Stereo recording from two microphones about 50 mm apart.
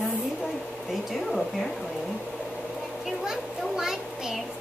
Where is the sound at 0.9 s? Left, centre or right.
Centre.